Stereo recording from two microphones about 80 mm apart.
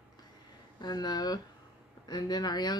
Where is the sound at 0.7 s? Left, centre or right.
Left.